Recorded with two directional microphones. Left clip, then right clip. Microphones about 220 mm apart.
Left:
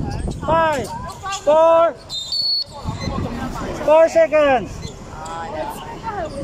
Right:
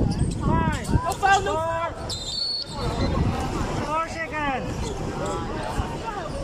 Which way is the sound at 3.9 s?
50° left (ahead or behind).